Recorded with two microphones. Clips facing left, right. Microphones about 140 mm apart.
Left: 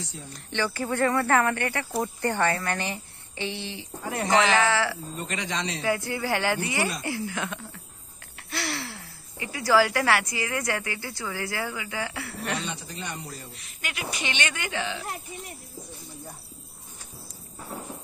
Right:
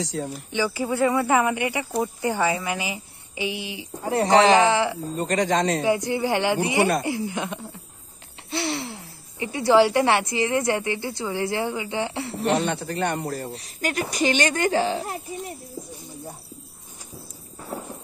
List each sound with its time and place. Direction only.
0.0 s speech: 90° right
0.3 s a woman's voice: 10° right (ahead or behind)
4.0 s speech: 30° right (ahead or behind)
4.6 s speech: 20° right (ahead or behind)
5.1 s speech: 40° right (ahead or behind)
5.9 s speech: 20° right (ahead or behind)
12.5 s a man's voice: 60° right (ahead or behind)
13.5 s speech: 40° right (ahead or behind)